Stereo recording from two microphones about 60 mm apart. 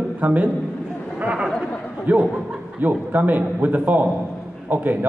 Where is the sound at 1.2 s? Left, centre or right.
Centre.